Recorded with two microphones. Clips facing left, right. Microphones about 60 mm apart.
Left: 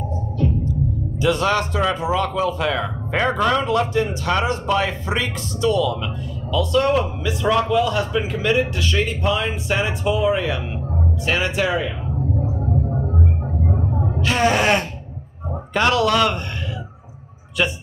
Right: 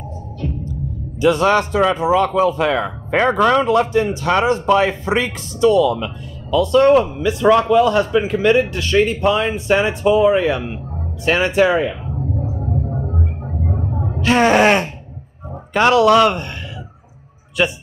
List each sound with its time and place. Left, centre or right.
1.2 s a man's voice: right
14.2 s speech: right
15.7 s a man's voice: right